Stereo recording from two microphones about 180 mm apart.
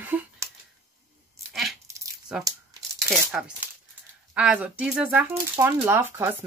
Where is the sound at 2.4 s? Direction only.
20° right (ahead or behind).